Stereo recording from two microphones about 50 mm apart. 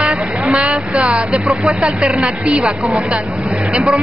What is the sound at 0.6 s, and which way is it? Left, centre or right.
Speech, right.